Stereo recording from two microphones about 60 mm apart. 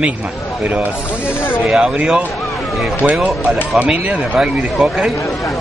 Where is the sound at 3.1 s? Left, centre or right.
Centre.